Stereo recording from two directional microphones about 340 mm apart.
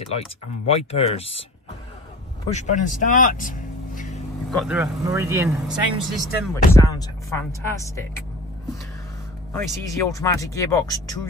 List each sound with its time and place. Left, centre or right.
0.7 s speech: centre
2.5 s speech: left
4.5 s speech: centre
6.5 s speech: centre
9.5 s speech: centre